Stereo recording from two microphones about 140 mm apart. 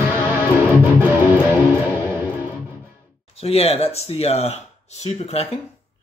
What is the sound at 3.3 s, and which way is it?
Speech, 45° left (ahead or behind).